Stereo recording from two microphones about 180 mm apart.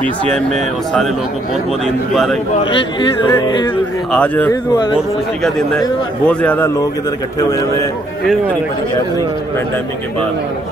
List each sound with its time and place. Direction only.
0.2 s speech: 5° left (ahead or behind)
2.6 s speech: 25° left (ahead or behind)
4.1 s speech: 5° left (ahead or behind)
4.5 s speech: 20° left (ahead or behind)
6.2 s speech: 10° left (ahead or behind)